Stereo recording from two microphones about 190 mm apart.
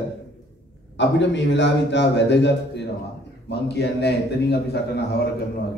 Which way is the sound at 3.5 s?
60° left (ahead or behind).